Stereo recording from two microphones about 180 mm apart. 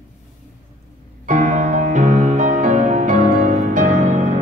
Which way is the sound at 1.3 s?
40° right (ahead or behind).